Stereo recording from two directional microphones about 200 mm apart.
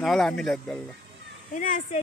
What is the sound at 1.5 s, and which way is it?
Speech, 40° left (ahead or behind).